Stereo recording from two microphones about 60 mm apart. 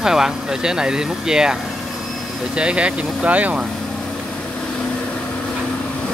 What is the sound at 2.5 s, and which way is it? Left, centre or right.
Speech, centre.